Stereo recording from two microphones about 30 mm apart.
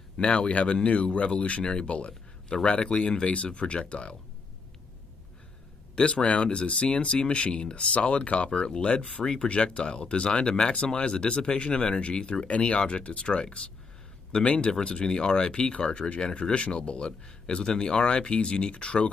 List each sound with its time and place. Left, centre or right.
0.2 s speech: left
1.6 s speech: left
5.9 s speech: left
8.5 s speech: left
14.4 s speech: left